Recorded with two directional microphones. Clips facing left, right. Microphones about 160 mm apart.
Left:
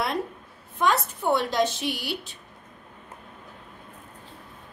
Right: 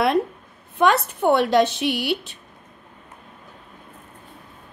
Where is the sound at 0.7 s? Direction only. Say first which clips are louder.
Right 6 dB; 70° right (ahead or behind).